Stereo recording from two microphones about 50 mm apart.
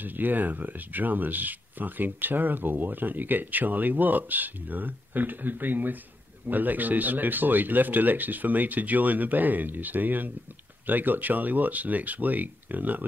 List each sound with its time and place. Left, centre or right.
0.0 s speech: right